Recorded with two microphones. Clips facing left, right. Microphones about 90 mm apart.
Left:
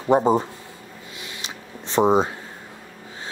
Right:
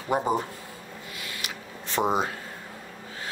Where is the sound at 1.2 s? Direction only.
20° left (ahead or behind).